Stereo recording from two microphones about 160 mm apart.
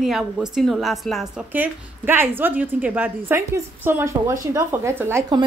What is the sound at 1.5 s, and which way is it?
A woman's voice, 10° right (ahead or behind).